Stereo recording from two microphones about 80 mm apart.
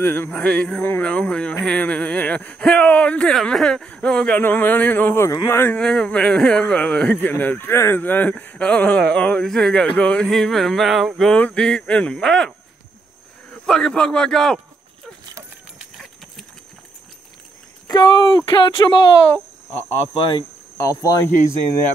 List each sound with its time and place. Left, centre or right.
0.0 s speech: left
0.3 s speech: centre
5.8 s speech: centre
10.2 s a sound: centre
11.3 s speech: centre
17.8 s speech: left
18.8 s speech: left
20.8 s speech: left